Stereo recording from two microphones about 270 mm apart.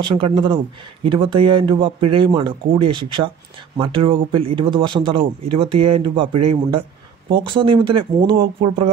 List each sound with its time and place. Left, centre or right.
0.1 s speech: centre